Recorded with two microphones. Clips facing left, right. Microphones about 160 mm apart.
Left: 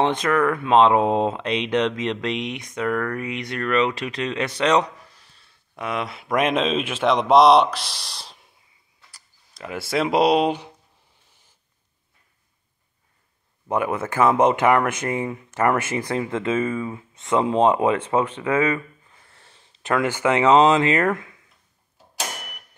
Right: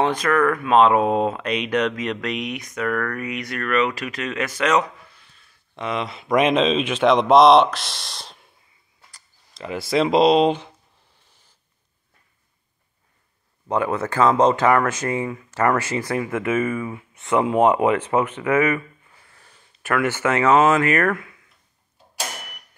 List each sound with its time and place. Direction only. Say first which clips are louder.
0.0 s speech: right 1 dB; 25° left (ahead or behind)
5.8 s speech: right 1 dB; 5° left (ahead or behind)
13.7 s speech: right 1 dB; 15° left (ahead or behind)